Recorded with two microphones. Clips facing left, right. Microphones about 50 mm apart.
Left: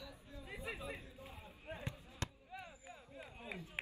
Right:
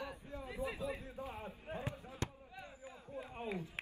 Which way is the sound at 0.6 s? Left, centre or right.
Left.